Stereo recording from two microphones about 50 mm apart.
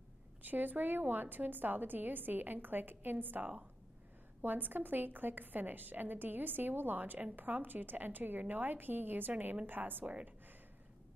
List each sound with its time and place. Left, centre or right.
0.4 s a woman's voice: right